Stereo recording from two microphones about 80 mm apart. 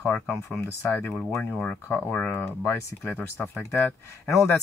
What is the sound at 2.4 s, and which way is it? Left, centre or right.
Speech, left.